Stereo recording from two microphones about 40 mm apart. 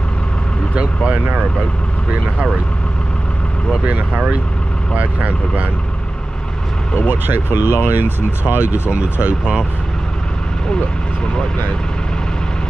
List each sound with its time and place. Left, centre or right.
0.7 s speech: right
3.8 s speech: right
7.1 s speech: right
7.9 s speech: right
8.9 s speech: right